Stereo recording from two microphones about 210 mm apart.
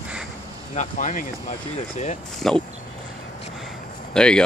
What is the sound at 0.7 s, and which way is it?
Speech, 40° left (ahead or behind).